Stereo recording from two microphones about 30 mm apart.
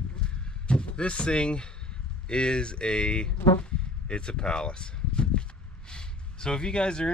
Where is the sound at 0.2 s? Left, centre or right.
Left.